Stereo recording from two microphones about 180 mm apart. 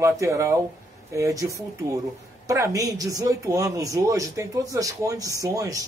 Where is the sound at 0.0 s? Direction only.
15° right (ahead or behind).